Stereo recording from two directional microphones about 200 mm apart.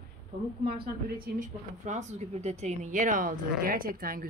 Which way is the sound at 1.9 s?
35° right (ahead or behind).